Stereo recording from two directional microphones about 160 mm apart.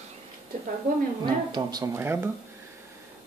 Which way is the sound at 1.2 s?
25° right (ahead or behind).